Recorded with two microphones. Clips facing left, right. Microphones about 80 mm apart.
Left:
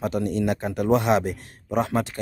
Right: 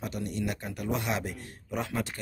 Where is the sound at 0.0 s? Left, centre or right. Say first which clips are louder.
Left 9 dB; left.